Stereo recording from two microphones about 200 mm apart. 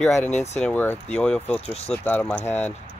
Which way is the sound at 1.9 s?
10° left (ahead or behind).